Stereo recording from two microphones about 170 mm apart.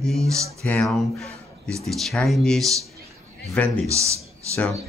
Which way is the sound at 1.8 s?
Centre (ahead or behind).